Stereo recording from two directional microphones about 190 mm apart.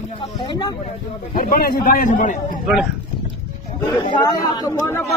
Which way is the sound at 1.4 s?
50° left (ahead or behind).